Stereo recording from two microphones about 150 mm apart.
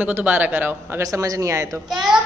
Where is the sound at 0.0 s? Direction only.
10° right (ahead or behind).